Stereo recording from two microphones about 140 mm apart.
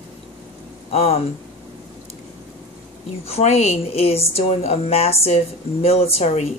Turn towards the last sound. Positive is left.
turn(degrees=50)  # may be behind; listen again after turning